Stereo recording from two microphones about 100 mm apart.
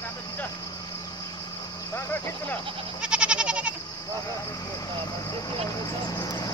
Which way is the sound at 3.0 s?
10° right (ahead or behind).